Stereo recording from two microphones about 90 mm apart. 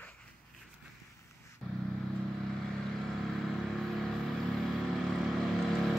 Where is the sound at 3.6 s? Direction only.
Centre (ahead or behind).